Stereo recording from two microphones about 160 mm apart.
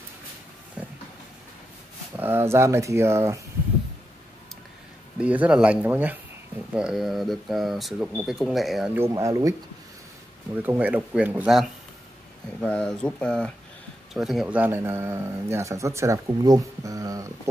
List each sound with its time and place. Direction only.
0.8 s vehicle: 5° right (ahead or behind)
2.1 s speech: 15° right (ahead or behind)
5.2 s speech: 10° right (ahead or behind)
8.9 s speech: 15° right (ahead or behind)